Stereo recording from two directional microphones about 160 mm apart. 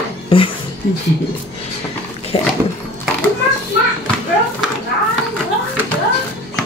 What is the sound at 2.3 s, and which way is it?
Speech, 35° left (ahead or behind).